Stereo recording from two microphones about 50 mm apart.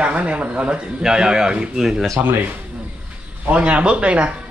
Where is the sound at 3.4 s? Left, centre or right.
Right.